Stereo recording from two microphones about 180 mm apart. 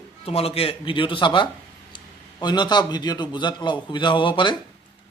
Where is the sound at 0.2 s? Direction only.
35° left (ahead or behind).